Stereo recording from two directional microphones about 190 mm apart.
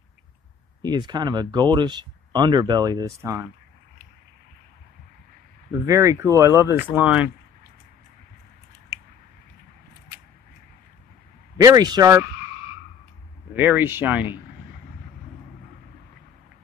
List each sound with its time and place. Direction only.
0.8 s speech: 20° right (ahead or behind)
5.9 s speech: 15° right (ahead or behind)
11.5 s speech: 20° right (ahead or behind)
13.6 s speech: 10° right (ahead or behind)